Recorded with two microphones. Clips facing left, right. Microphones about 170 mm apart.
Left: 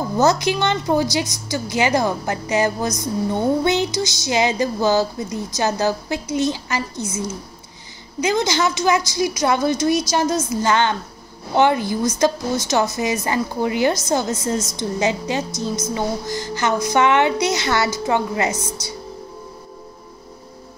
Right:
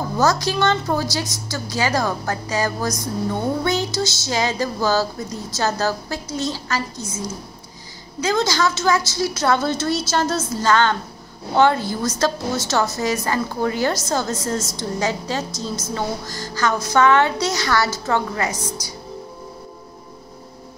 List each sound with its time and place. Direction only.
0.2 s a woman's voice: 20° left (ahead or behind)
8.2 s a woman's voice: 20° left (ahead or behind)